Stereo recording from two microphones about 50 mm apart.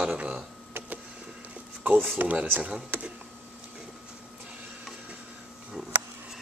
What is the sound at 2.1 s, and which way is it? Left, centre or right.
Speech, right.